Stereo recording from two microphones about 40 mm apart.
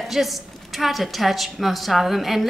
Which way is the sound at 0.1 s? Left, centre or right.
Centre.